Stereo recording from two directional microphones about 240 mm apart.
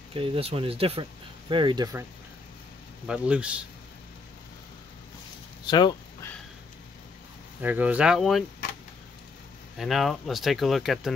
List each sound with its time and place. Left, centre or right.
0.1 s speech: right
3.1 s speech: centre
5.7 s speech: centre
7.6 s speech: centre
9.8 s speech: centre